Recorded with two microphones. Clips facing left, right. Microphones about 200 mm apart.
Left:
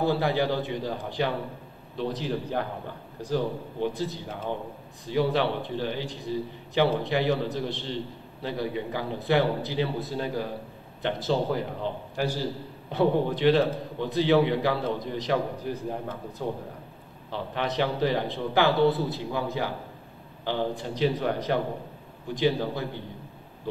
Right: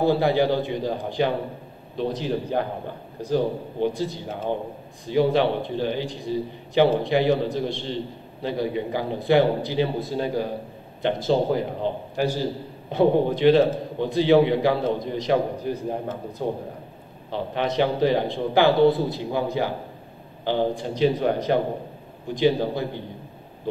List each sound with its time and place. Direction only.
0.0 s a man's voice: 20° right (ahead or behind)